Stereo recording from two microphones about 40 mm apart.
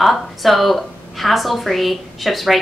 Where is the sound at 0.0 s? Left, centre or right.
Centre.